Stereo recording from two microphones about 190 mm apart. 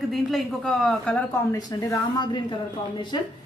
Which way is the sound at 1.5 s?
20° left (ahead or behind).